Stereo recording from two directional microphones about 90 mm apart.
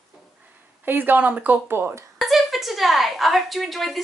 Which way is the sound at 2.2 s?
Centre (ahead or behind).